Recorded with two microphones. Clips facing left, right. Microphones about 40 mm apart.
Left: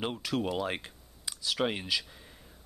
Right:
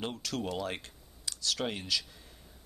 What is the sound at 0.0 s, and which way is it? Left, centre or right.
Speech, centre.